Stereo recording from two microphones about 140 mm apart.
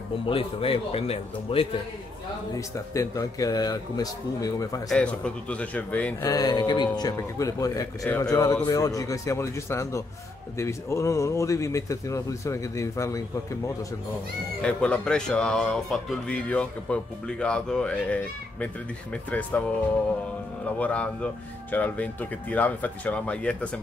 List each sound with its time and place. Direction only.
0.3 s a man's voice: 40° left (ahead or behind)
2.5 s speech: 25° left (ahead or behind)
4.8 s speech: 10° left (ahead or behind)
6.2 s speech: 25° left (ahead or behind)
14.6 s speech: 10° left (ahead or behind)
20.8 s speech: 10° left (ahead or behind)